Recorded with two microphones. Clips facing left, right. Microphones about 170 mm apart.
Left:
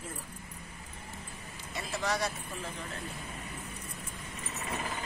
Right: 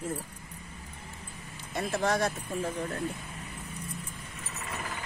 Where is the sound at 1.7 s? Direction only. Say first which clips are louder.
Right 6 dB; 50° right (ahead or behind).